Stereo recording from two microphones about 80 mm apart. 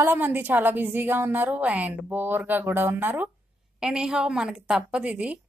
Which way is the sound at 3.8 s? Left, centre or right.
Centre.